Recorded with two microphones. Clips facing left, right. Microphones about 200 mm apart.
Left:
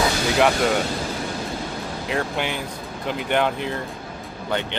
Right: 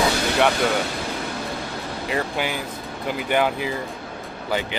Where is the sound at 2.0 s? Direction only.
5° right (ahead or behind).